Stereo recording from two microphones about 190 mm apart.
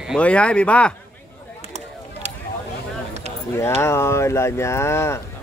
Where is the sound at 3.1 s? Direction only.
35° right (ahead or behind).